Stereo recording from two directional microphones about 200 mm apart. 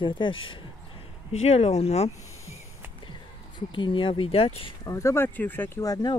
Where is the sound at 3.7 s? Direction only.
25° left (ahead or behind).